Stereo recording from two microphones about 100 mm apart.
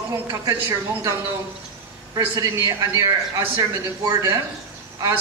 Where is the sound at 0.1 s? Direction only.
30° right (ahead or behind).